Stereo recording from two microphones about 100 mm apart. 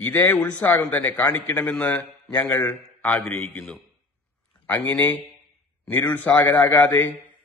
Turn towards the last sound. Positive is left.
turn(degrees=20)  # may be behind; listen again after turning